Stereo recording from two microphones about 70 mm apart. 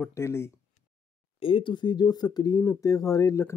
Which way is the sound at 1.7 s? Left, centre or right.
Left.